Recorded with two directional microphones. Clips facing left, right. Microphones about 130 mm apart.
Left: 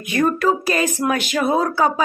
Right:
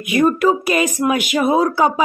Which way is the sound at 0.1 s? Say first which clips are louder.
Right 3 dB; 10° right (ahead or behind).